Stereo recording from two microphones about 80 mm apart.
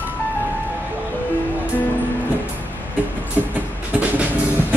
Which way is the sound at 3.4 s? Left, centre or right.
Right.